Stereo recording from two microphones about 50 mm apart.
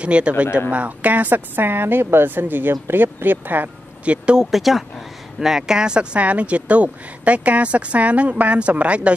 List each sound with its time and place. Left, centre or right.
0.0 s a woman's voice: right
4.0 s speech: right
4.4 s speech: centre; by 9.1 s right